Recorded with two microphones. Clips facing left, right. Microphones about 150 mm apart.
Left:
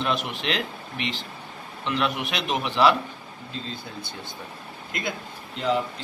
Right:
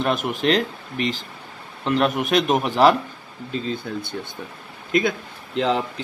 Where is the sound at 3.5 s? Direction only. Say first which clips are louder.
Right 9 dB; 60° right (ahead or behind).